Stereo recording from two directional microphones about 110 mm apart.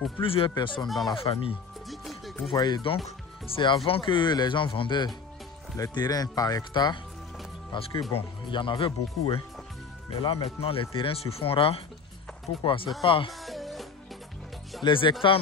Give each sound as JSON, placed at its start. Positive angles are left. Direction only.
{"t": 0.2, "sound": "speech", "side_deg": 55}
{"t": 0.8, "sound": "speech", "side_deg": 0}
{"t": 1.1, "sound": "speech", "side_deg": 55}
{"t": 1.9, "sound": "music", "side_deg": 0}
{"t": 2.5, "sound": "speech", "side_deg": 40}
{"t": 8.1, "sound": "speech", "side_deg": 55}
{"t": 13.3, "sound": "music", "side_deg": 0}
{"t": 14.8, "sound": "speech", "side_deg": 45}